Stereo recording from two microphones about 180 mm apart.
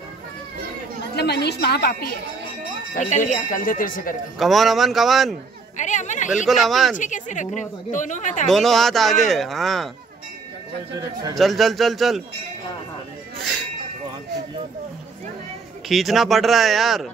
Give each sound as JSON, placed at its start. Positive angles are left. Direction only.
{"t": 1.1, "sound": "a woman's voice", "side_deg": 65}
{"t": 2.9, "sound": "speech", "side_deg": 45}
{"t": 4.4, "sound": "speech", "side_deg": 0}
{"t": 5.8, "sound": "speech", "side_deg": 45}
{"t": 6.3, "sound": "speech", "side_deg": 0}
{"t": 7.0, "sound": "speech", "side_deg": 45}
{"t": 8.5, "sound": "speech", "side_deg": 0}
{"t": 11.3, "sound": "speech", "side_deg": 0}
{"t": 15.9, "sound": "speech", "side_deg": 0}